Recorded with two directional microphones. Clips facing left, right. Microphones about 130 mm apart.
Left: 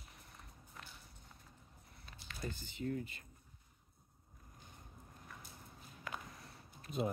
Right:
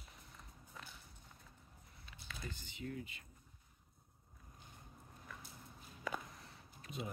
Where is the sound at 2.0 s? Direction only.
40° left (ahead or behind).